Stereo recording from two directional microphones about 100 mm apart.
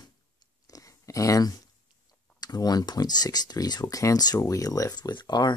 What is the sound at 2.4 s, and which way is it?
Speech, 40° left (ahead or behind).